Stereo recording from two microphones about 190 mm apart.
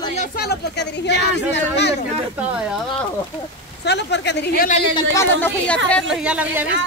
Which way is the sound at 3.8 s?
65° left (ahead or behind).